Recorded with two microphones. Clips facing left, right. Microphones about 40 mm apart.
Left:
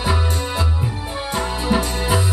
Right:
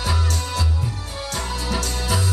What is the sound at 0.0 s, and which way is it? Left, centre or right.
Music, left.